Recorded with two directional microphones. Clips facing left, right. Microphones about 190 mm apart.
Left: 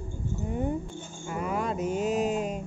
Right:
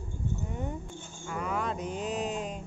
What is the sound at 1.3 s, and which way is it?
Mantra, 10° left (ahead or behind).